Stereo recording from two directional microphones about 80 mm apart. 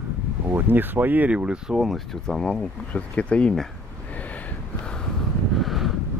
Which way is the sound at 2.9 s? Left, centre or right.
Centre.